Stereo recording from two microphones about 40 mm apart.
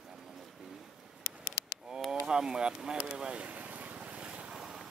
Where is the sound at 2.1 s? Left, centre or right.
Centre.